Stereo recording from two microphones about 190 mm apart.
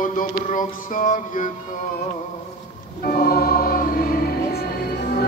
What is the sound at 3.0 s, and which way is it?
Music, 50° left (ahead or behind).